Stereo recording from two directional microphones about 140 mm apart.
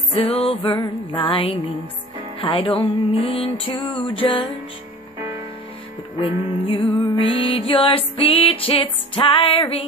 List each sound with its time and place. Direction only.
0.1 s music: 45° left (ahead or behind)
6.6 s music: 40° left (ahead or behind)